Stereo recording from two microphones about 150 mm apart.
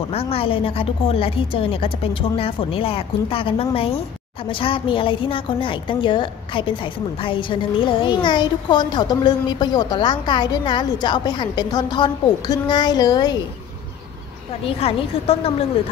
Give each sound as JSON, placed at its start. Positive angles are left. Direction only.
{"t": 0.1, "sound": "a woman's voice", "side_deg": 40}
{"t": 14.6, "sound": "a woman's voice", "side_deg": 40}